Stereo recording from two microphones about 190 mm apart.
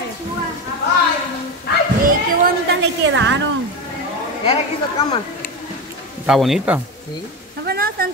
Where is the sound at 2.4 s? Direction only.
65° right (ahead or behind).